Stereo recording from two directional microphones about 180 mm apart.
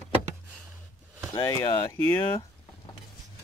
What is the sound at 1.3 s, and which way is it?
Speech, 20° left (ahead or behind).